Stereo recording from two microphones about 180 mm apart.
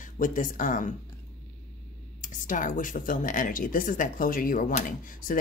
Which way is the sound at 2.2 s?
45° left (ahead or behind).